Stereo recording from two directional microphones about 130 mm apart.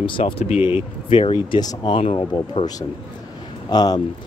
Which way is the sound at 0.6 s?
15° right (ahead or behind).